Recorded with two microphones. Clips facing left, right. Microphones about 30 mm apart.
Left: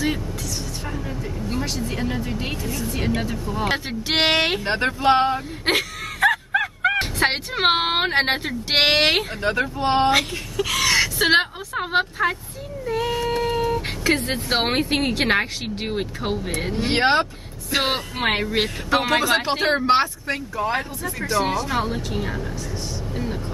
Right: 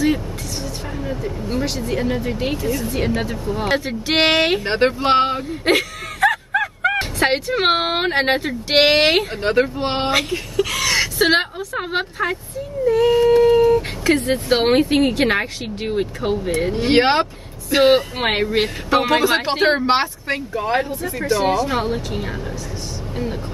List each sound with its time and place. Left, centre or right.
1.9 s speech: centre
3.3 s speech: centre
4.7 s speech: right
5.7 s speech: centre
9.4 s speech: right
10.5 s speech: centre
12.8 s whimper: centre
14.5 s speech: centre
16.7 s speech: centre